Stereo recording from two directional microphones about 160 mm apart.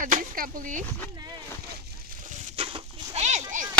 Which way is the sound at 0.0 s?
60° right (ahead or behind).